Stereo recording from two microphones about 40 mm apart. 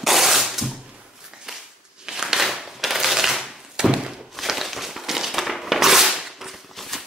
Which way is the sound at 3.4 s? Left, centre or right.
Centre.